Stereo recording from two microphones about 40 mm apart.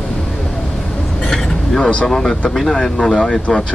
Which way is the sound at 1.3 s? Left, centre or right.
Centre.